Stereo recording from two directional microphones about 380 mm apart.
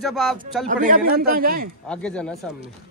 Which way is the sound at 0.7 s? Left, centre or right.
Right.